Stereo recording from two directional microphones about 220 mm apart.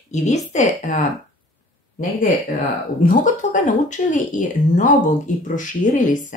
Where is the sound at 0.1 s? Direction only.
30° left (ahead or behind).